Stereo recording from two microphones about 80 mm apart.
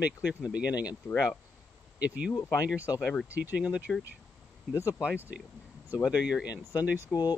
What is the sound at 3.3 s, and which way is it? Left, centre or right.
Speech, right.